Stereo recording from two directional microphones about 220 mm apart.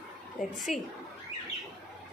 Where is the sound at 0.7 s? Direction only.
Centre (ahead or behind).